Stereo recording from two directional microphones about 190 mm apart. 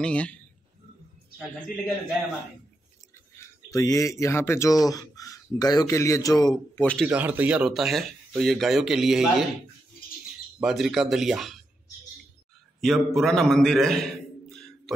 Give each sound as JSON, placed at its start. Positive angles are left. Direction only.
{"t": 0.0, "sound": "speech", "side_deg": 5}
{"t": 3.7, "sound": "speech", "side_deg": 15}
{"t": 6.8, "sound": "speech", "side_deg": 5}
{"t": 7.1, "sound": "speech", "side_deg": -10}
{"t": 10.6, "sound": "speech", "side_deg": 0}
{"t": 12.8, "sound": "a man's voice", "side_deg": 0}